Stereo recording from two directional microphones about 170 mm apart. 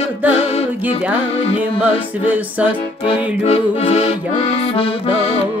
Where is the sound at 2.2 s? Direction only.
10° right (ahead or behind).